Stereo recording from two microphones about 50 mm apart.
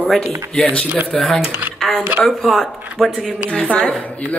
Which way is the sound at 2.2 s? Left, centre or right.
Centre.